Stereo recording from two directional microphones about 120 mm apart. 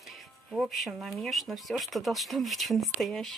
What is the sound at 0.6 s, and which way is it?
Speech, centre (ahead or behind).